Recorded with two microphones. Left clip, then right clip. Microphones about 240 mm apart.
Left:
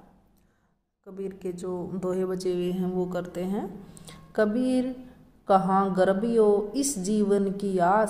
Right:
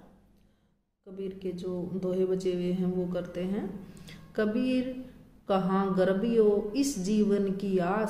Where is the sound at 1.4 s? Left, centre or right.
Left.